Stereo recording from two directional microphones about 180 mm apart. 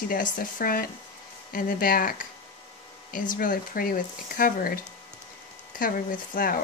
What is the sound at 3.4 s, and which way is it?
Speech, 50° left (ahead or behind).